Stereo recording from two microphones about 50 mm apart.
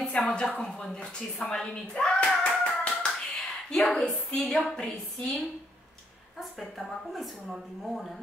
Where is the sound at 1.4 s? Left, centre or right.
Centre.